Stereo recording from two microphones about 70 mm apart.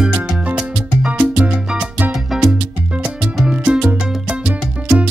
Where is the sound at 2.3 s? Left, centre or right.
Centre.